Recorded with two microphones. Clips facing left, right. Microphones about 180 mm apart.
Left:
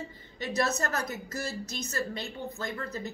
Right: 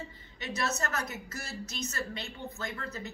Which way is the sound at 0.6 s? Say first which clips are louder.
Left 4 dB; 35° left (ahead or behind).